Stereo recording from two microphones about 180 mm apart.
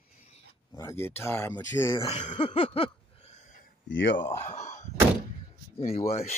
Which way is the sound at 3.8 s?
85° left.